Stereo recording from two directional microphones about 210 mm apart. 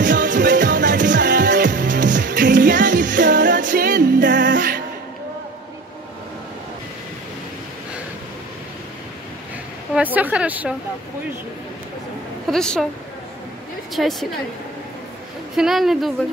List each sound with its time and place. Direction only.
0.0 s music: 40° right (ahead or behind)
9.9 s a woman's voice: 10° right (ahead or behind)
12.4 s a woman's voice: centre (ahead or behind)
14.0 s a woman's voice: centre (ahead or behind)
15.5 s a woman's voice: centre (ahead or behind)